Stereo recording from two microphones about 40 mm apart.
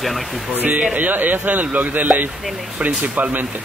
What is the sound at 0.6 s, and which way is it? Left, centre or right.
Speech, right.